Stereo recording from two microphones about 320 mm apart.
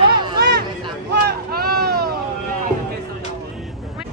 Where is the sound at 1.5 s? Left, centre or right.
Right.